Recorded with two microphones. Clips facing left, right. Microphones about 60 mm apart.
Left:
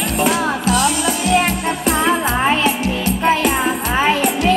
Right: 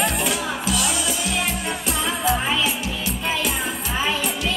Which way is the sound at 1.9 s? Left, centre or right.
Left.